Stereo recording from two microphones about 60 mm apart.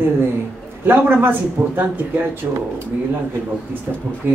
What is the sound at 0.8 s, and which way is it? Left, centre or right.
A man's voice, right.